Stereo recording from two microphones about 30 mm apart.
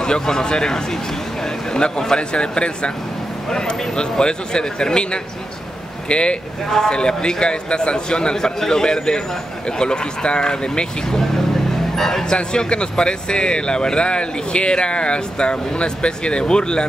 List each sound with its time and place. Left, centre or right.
0.0 s a man's voice: left
2.1 s a man's voice: left
11.1 s speech: centre
12.3 s speech: left